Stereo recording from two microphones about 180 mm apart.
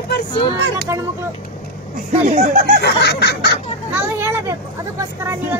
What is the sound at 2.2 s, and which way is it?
Speech, 50° right (ahead or behind).